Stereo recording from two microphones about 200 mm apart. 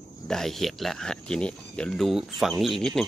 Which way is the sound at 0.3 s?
Centre (ahead or behind).